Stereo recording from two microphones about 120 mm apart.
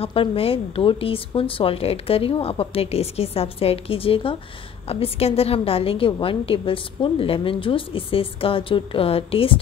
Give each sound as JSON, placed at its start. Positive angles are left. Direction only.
{"t": 0.0, "sound": "a woman's voice", "side_deg": 45}